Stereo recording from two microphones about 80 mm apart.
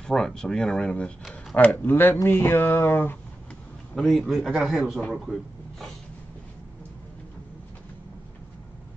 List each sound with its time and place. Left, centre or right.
0.0 s speech: centre; by 2.1 s left
2.2 s a sound: left
3.9 s a man's voice: centre